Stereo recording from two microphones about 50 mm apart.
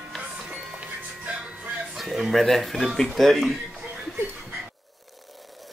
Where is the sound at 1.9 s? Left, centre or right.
Centre.